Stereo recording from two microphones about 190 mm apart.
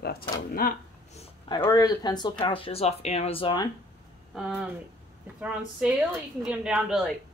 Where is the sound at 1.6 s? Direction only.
20° left (ahead or behind).